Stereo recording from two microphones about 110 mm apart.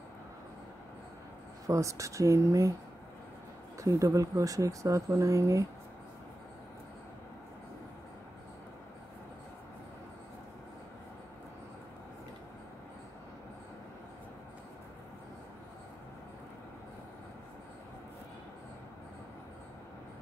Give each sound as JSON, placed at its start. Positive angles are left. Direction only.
{"t": 1.7, "sound": "speech", "side_deg": -30}
{"t": 3.8, "sound": "speech", "side_deg": -30}